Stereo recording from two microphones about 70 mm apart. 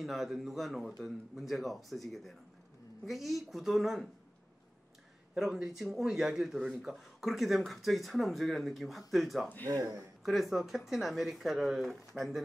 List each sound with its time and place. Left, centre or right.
0.0 s speech: centre
5.3 s a man's voice: centre
9.7 s speech: right
10.2 s speech: centre